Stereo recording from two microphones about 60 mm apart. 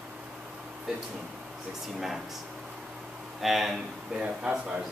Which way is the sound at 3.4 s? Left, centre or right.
Centre.